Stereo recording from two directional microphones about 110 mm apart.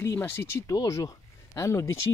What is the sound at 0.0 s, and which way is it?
Speech, 25° left (ahead or behind).